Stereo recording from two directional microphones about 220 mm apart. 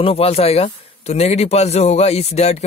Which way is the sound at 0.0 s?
25° left (ahead or behind).